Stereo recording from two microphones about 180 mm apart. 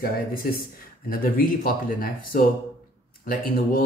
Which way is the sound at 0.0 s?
55° left (ahead or behind).